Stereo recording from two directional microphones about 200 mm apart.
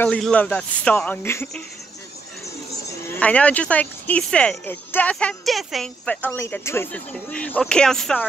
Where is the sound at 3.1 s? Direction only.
5° left (ahead or behind).